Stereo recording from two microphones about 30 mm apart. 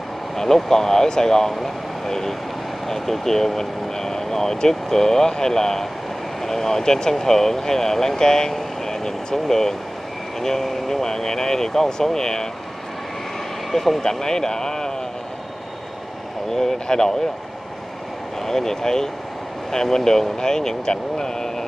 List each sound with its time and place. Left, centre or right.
0.4 s speech: centre
13.7 s speech: centre
14.0 s a man's voice: centre
16.5 s a man's voice: centre
18.4 s speech: centre